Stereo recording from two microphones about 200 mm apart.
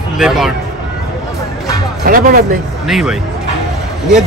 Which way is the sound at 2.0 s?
45° right (ahead or behind).